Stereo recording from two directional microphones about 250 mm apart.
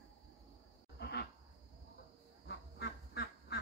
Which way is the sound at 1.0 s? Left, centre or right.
Left.